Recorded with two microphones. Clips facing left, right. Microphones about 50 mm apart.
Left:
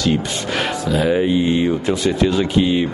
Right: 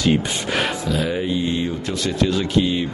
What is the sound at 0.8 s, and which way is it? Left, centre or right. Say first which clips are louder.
Speech: left 5 dB; centre.